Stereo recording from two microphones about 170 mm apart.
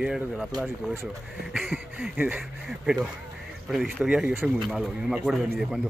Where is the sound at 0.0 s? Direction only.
5° right (ahead or behind).